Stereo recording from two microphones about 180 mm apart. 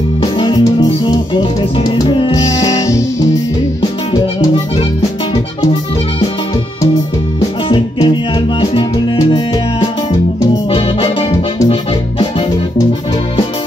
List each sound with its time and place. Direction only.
0.2 s music: 25° left (ahead or behind)
4.1 s music: 25° left (ahead or behind)
7.6 s music: 25° left (ahead or behind)
10.7 s accordion: 30° left (ahead or behind)